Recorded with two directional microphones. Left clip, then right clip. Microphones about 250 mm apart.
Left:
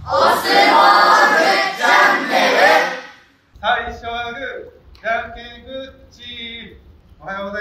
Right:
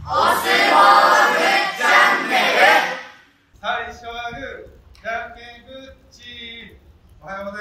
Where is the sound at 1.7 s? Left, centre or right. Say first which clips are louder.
Even; right.